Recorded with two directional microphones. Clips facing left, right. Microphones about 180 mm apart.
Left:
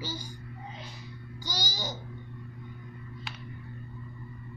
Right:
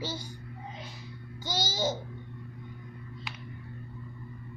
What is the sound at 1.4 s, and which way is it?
Babbling, 25° right (ahead or behind).